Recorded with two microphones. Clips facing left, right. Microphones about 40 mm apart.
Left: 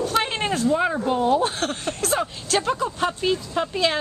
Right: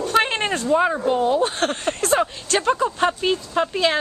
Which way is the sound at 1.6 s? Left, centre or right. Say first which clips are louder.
Right 4 dB; right.